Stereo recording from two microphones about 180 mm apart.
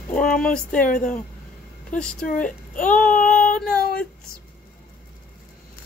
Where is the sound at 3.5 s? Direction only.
5° left (ahead or behind).